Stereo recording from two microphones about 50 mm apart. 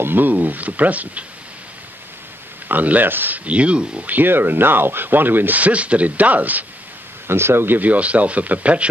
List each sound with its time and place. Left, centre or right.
0.0 s speech: right
2.7 s speech: right
3.4 s speech: right
4.1 s speech: right
7.2 s speech: right